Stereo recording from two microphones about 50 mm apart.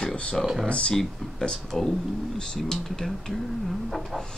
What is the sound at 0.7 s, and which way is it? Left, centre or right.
Speech, left.